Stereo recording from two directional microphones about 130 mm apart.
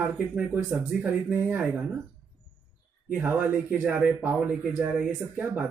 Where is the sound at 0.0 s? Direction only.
15° right (ahead or behind).